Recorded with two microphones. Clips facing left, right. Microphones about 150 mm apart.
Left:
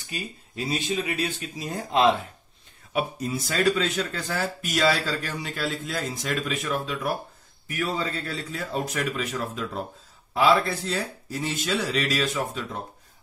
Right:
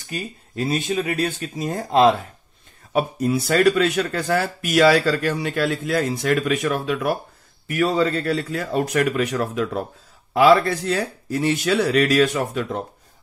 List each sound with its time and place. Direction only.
0.6 s speech: 50° right (ahead or behind)
3.2 s a man's voice: 65° right (ahead or behind)